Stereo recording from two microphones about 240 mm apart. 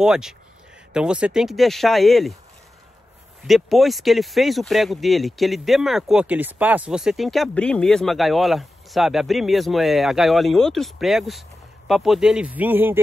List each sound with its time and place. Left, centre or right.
0.0 s speech: centre
3.4 s a man's voice: centre